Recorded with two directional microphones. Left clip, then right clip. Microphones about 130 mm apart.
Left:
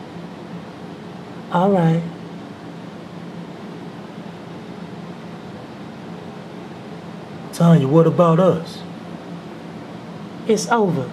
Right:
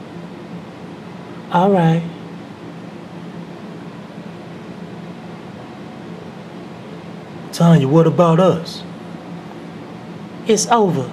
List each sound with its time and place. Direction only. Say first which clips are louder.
1.5 s a woman's voice: right 3 dB; 20° right (ahead or behind)
7.5 s a man's voice: right 1 dB; 15° right (ahead or behind)
10.4 s a man's voice: right 3 dB; 15° right (ahead or behind)